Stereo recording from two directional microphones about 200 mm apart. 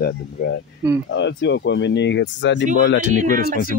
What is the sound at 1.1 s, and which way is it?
Speech, 65° left (ahead or behind).